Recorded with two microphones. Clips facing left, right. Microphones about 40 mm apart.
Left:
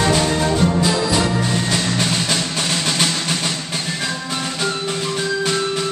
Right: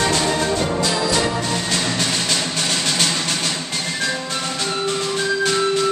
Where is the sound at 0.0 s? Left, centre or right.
Centre.